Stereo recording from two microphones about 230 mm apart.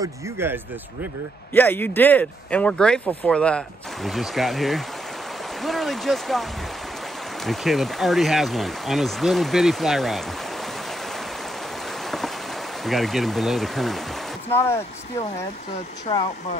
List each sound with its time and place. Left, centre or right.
0.0 s speech: centre
1.5 s speech: centre
7.4 s speech: centre
12.8 s speech: centre
16.1 s speech: left